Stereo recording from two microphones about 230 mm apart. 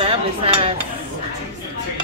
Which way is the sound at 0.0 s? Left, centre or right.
Right.